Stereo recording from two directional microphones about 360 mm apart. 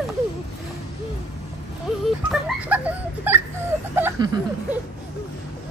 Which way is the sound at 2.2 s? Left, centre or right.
Centre.